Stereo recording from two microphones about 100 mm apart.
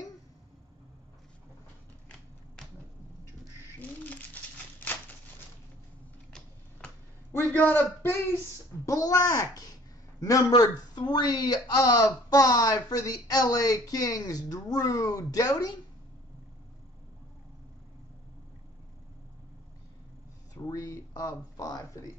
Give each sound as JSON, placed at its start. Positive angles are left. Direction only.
{"t": 2.0, "sound": "finger snapping", "side_deg": 5}
{"t": 4.0, "sound": "a sound", "side_deg": 15}
{"t": 7.5, "sound": "a man's voice", "side_deg": 20}
{"t": 8.8, "sound": "speech", "side_deg": 35}
{"t": 20.5, "sound": "speech", "side_deg": 35}